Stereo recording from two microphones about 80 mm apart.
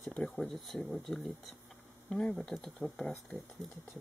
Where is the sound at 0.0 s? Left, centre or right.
Centre.